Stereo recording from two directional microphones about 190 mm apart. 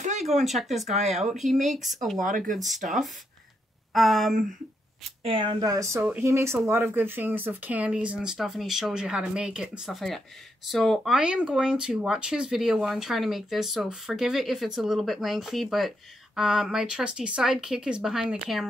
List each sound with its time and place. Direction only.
0.0 s a sound: 40° right (ahead or behind)
0.3 s speech: centre (ahead or behind)
0.8 s speech: 35° right (ahead or behind)
1.3 s speech: centre (ahead or behind)
2.1 s speech: 45° right (ahead or behind)
2.5 s speech: centre (ahead or behind)
3.9 s speech: centre (ahead or behind)
5.2 s speech: 25° right (ahead or behind); by 18.7 s centre (ahead or behind)